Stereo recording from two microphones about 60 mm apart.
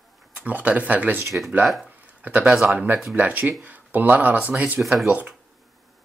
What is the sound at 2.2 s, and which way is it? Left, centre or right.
Speech, right.